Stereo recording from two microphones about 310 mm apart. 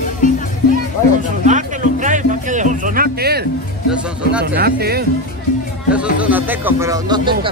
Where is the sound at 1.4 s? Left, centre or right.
Right.